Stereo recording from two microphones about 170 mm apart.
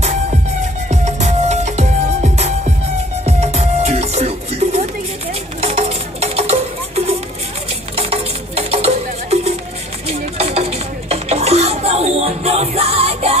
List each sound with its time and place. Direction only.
0.8 s music: 40° right (ahead or behind)
7.9 s music: 35° right (ahead or behind)
10.0 s a sound: 35° right (ahead or behind)